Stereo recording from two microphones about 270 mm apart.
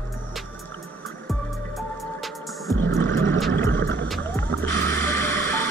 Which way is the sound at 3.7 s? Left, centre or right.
Right.